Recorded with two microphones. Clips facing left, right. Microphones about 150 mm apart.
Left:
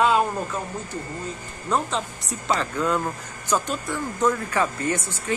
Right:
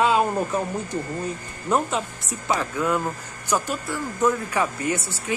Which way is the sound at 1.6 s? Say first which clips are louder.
Right 2 dB; 10° right (ahead or behind).